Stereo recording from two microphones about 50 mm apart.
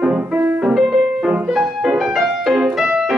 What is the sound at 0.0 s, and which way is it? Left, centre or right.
Music, centre.